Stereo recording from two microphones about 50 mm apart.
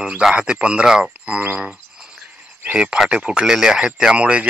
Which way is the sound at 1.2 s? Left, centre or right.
Right.